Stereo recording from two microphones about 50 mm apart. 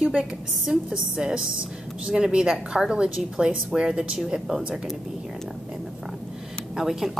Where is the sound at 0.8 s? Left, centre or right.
Centre.